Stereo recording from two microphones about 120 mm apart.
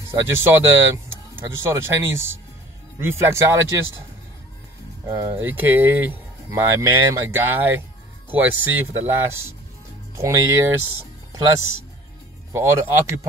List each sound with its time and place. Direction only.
0.2 s speech: 20° right (ahead or behind)
5.0 s speech: 25° right (ahead or behind)